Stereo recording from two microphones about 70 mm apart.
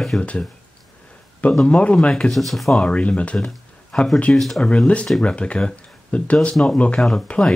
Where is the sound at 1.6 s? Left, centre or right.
Centre.